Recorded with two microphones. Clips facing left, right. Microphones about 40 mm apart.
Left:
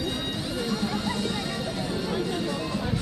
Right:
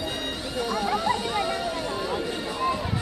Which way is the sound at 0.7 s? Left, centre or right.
Centre.